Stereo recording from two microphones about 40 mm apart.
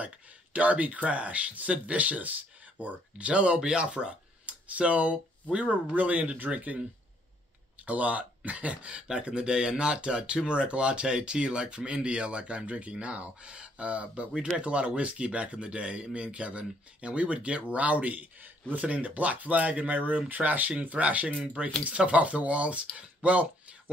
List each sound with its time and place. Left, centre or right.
0.0 s speech: right
4.6 s speech: right
7.8 s speech: right